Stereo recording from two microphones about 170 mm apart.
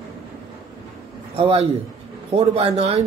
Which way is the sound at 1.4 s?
35° right (ahead or behind).